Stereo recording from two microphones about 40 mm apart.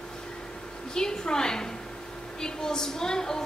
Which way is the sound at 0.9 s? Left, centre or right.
Centre.